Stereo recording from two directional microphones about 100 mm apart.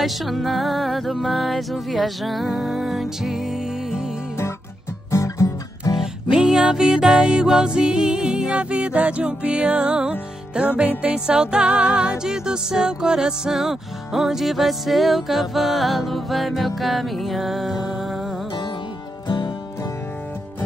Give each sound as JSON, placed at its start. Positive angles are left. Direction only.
{"t": 0.0, "sound": "music", "side_deg": 0}
{"t": 5.1, "sound": "music", "side_deg": 30}
{"t": 6.3, "sound": "music", "side_deg": -10}
{"t": 18.5, "sound": "music", "side_deg": 55}